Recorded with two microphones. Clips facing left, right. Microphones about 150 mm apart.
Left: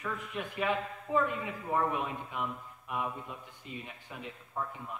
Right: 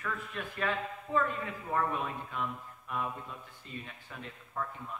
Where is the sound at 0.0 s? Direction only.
15° left (ahead or behind).